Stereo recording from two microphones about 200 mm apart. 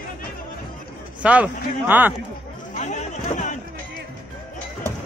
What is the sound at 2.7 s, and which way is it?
Chatter, 35° left (ahead or behind).